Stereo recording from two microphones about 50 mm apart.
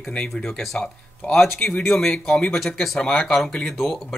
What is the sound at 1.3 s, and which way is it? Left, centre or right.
Speech, centre.